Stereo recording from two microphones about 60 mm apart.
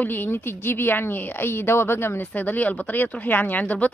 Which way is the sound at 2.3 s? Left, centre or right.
Left.